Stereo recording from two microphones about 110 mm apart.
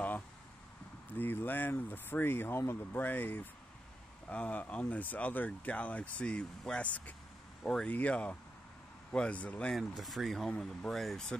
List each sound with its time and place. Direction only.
1.1 s speech: 15° left (ahead or behind)
9.8 s speech: centre (ahead or behind)